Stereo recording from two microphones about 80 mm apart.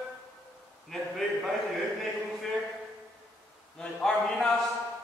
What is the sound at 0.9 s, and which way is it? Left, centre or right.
Speech, centre.